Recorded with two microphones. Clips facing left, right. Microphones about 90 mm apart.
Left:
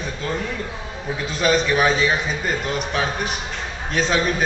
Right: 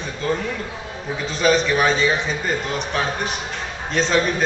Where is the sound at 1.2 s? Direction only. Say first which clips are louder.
Right 1 dB; 5° left (ahead or behind).